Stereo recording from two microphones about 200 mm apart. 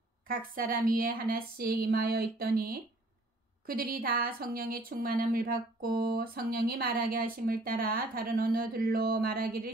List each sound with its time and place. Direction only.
0.3 s speech: 45° right (ahead or behind)